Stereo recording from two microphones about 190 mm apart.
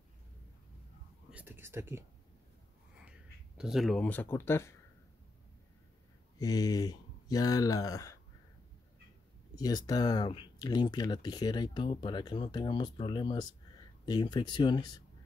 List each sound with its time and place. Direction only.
1.3 s speech: 10° right (ahead or behind)
3.1 s speech: 5° right (ahead or behind); by 4.7 s 15° left (ahead or behind)
6.3 s speech: 20° left (ahead or behind)
9.6 s speech: 20° left (ahead or behind)